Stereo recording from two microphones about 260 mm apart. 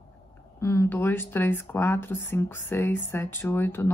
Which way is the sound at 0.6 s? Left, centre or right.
Centre.